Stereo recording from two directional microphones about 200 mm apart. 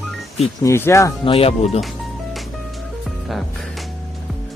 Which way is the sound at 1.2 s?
25° left (ahead or behind).